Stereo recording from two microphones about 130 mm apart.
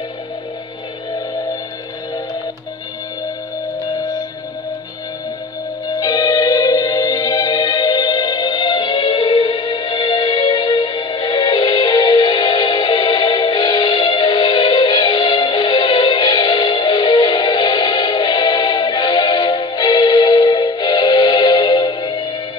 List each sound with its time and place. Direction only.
5.9 s music: 30° left (ahead or behind)